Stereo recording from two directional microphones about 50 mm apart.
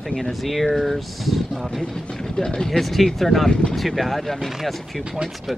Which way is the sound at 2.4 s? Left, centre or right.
Centre.